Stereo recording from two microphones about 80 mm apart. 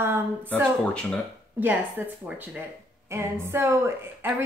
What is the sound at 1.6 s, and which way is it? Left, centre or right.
A woman's voice, right.